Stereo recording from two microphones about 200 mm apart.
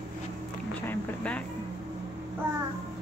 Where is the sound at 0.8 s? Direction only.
5° left (ahead or behind).